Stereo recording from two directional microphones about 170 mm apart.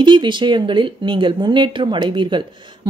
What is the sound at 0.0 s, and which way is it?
A woman's voice, 25° right (ahead or behind).